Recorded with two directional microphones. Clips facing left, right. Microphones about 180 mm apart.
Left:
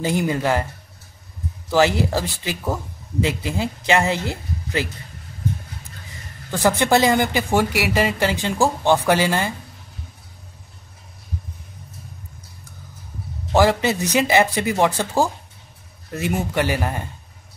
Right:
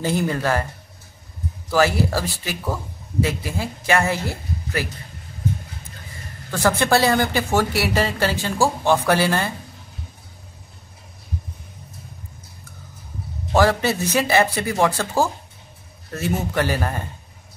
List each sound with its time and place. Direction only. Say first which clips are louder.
0.0 s speech: left 1 dB; 15° left (ahead or behind)
1.7 s speech: left 1 dB; 20° left (ahead or behind)
6.5 s speech: left 1 dB; 15° left (ahead or behind)
13.5 s speech: left 1 dB; 15° left (ahead or behind)